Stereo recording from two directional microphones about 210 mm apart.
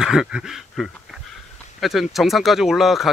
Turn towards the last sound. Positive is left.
turn(degrees=0)  # may be behind; listen again after turning